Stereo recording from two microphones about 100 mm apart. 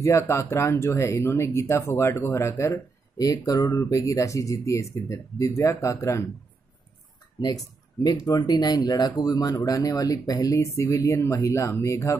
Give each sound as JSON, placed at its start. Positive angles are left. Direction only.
{"t": 0.0, "sound": "speech", "side_deg": 30}
{"t": 8.0, "sound": "speech", "side_deg": 40}